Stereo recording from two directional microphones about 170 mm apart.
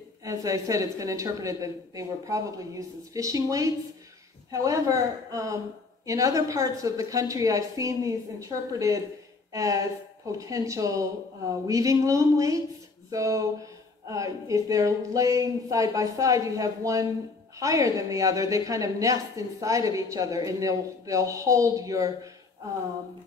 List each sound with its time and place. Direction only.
0.2 s a woman's voice: 20° right (ahead or behind)